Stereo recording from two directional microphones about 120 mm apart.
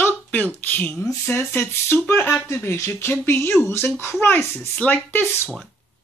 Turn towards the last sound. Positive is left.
turn(degrees=10)  # may be behind; listen again after turning